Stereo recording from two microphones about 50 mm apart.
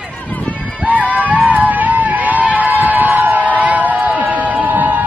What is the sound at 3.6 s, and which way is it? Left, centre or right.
Crowd, right.